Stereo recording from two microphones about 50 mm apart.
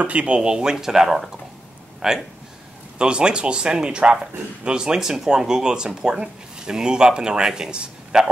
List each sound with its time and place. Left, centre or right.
0.0 s speech: right